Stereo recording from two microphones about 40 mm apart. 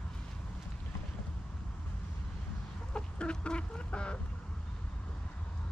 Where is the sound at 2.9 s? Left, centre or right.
Left.